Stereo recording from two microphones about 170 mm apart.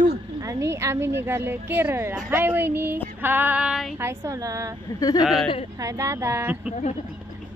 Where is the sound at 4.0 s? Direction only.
15° right (ahead or behind).